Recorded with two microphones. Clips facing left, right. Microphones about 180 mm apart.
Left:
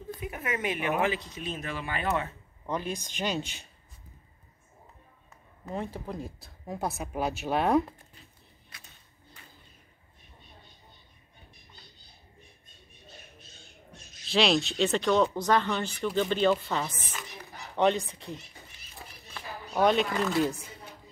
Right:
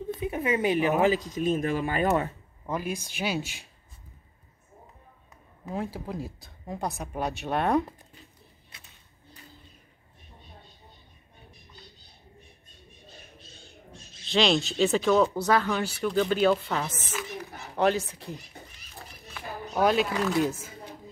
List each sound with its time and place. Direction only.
0.1 s a sound: 25° right (ahead or behind)
1.0 s speech: 40° right (ahead or behind)
2.6 s speech: 5° right (ahead or behind)
5.7 s speech: 5° right (ahead or behind)
14.2 s speech: centre (ahead or behind)
17.1 s a sound: 5° right (ahead or behind)
17.7 s speech: centre (ahead or behind)